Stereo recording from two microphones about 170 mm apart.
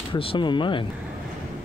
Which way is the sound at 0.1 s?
30° left (ahead or behind).